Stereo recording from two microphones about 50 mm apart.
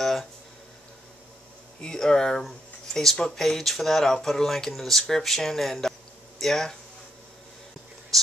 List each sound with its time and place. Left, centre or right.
0.0 s a sound: centre
1.8 s speech: centre
8.1 s speech: centre